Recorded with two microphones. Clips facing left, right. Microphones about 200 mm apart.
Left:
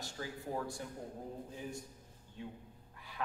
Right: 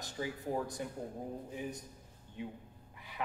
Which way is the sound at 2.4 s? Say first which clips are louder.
Right 4 dB; 15° right (ahead or behind).